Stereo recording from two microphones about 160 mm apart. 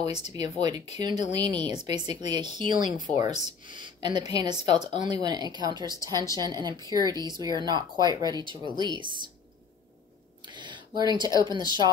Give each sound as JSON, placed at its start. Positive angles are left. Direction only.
{"t": 0.6, "sound": "speech", "side_deg": -25}
{"t": 10.4, "sound": "speech", "side_deg": -30}